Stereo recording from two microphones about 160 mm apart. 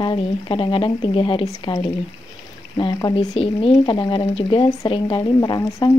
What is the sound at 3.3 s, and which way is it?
Speech, 35° left (ahead or behind).